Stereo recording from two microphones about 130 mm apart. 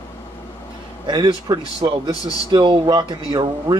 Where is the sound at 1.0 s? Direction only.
35° right (ahead or behind).